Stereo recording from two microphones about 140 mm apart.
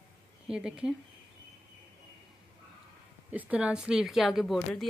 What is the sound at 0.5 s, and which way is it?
Speech, 5° right (ahead or behind).